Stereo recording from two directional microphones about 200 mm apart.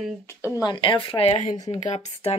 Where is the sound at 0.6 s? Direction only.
25° left (ahead or behind).